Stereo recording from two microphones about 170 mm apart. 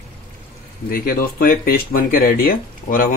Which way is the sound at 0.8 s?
60° left (ahead or behind).